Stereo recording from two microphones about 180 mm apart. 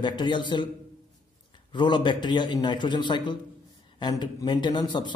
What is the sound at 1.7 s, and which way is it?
Speech, 25° left (ahead or behind).